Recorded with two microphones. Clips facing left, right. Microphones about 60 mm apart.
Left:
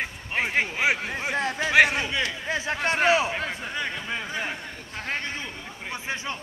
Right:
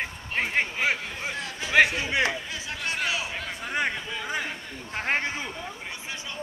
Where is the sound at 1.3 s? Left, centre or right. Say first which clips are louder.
Left 8 dB; left.